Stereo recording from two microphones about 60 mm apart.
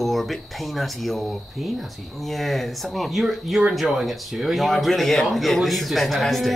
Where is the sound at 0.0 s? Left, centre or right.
Centre.